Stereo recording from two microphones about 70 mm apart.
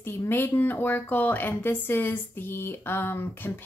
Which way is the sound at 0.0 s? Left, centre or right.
Left.